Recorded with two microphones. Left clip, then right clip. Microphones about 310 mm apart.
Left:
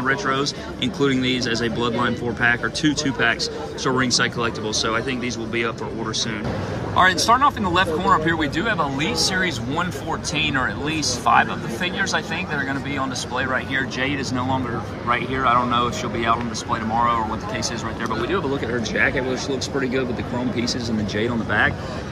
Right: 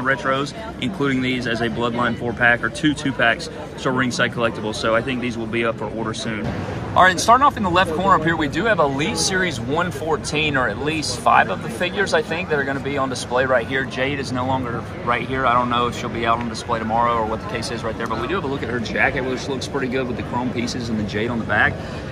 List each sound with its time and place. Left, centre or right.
0.0 s speech: centre
7.0 s speech: centre
18.3 s speech: centre
21.5 s speech: centre